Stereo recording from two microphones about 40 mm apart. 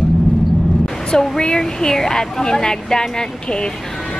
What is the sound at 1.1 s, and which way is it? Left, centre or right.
A woman's voice, centre.